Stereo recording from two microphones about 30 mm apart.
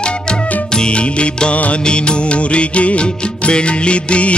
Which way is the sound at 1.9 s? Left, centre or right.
Left.